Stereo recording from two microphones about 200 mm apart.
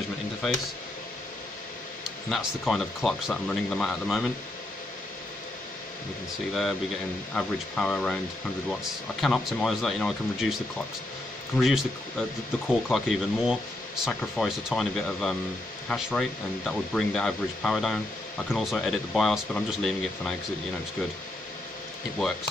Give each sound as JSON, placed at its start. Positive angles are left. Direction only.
{"t": 0.4, "sound": "speech", "side_deg": 0}
{"t": 2.0, "sound": "speech", "side_deg": 0}
{"t": 7.3, "sound": "speech", "side_deg": 5}
{"t": 9.2, "sound": "speech", "side_deg": 0}